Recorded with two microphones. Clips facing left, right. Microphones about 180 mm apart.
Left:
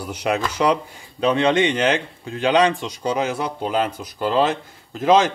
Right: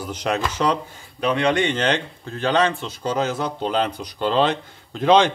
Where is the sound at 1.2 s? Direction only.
25° left (ahead or behind).